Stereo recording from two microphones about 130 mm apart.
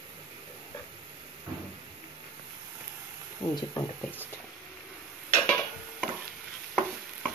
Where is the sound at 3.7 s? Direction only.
15° left (ahead or behind).